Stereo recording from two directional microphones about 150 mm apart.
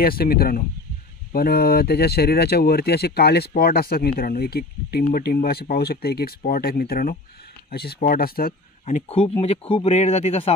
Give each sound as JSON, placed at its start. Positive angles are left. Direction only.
{"t": 0.0, "sound": "speech", "side_deg": 85}
{"t": 8.8, "sound": "speech", "side_deg": 45}